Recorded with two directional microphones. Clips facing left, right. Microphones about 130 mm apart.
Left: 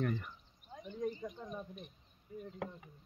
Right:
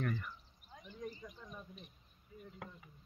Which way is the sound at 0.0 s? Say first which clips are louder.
Left 3 dB; 30° left (ahead or behind).